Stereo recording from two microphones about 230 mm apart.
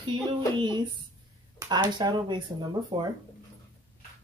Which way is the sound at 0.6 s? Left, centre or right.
Centre.